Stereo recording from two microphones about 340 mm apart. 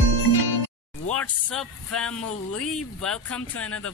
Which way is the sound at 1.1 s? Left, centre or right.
Centre.